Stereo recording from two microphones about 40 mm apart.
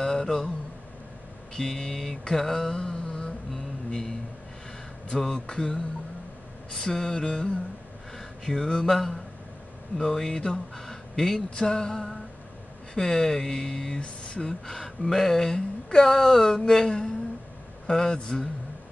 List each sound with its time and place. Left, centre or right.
0.0 s a sound: centre
1.5 s speech: centre
2.7 s mantra: centre
3.5 s music: centre
5.1 s speech: centre
9.9 s speech: centre
11.1 s speech: centre
11.5 s speech: centre
14.0 s a sound: left
14.4 s speech: centre